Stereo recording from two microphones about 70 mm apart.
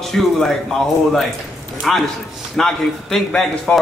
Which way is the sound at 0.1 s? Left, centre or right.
Centre.